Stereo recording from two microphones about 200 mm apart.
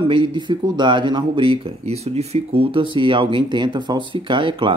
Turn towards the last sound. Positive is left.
turn(degrees=-25)  # may be behind; listen again after turning